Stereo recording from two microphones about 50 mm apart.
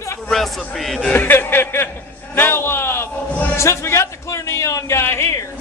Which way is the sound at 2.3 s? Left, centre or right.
Left.